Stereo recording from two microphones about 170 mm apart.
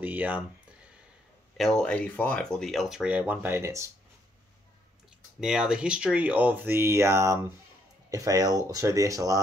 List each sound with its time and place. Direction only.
0.0 s speech: 10° right (ahead or behind)
1.6 s speech: 5° left (ahead or behind); by 3.8 s 15° right (ahead or behind)
5.4 s speech: 5° right (ahead or behind); by 9.4 s 20° right (ahead or behind)